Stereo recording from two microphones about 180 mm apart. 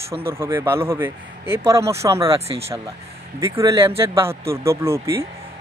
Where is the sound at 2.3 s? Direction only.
35° right (ahead or behind).